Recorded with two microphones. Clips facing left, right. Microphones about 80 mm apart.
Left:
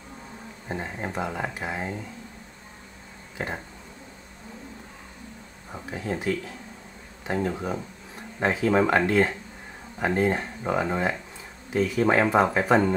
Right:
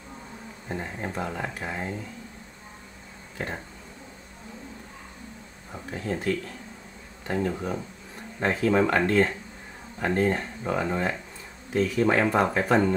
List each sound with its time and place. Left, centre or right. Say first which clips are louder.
0.7 s speech: left 1 dB; centre
3.3 s speech: left 1 dB; centre
5.7 s speech: even; centre